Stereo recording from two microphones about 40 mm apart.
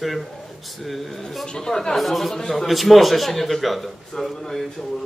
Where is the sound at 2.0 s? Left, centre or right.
Centre.